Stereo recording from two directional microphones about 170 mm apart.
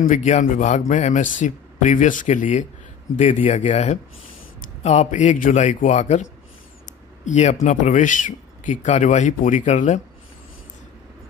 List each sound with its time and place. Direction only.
0.0 s speech: 45° left (ahead or behind)
7.2 s speech: 45° left (ahead or behind)